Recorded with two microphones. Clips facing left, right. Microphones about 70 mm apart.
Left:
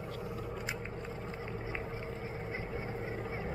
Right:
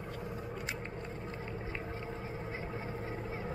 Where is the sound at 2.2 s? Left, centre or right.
Left.